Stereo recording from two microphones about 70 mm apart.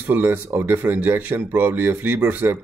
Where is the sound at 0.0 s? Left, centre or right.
Right.